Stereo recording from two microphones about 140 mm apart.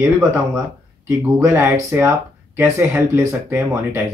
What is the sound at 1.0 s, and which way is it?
Speech, 20° right (ahead or behind).